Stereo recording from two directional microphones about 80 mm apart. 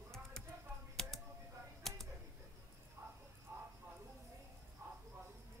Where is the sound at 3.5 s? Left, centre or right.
Right.